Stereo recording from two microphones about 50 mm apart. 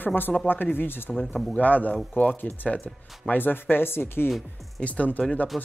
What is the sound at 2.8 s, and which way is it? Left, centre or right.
Speech, left.